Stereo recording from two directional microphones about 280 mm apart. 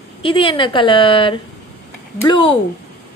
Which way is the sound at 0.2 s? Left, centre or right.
Centre.